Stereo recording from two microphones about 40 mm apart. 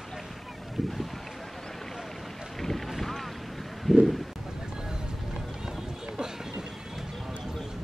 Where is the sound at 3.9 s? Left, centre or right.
Centre.